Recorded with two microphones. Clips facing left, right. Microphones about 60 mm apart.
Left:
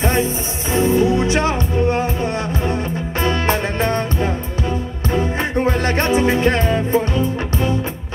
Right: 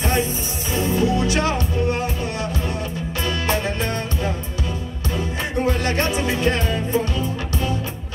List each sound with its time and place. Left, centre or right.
0.0 s music: left